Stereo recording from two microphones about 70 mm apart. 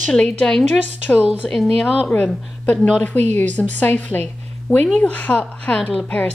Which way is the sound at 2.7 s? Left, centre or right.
Centre.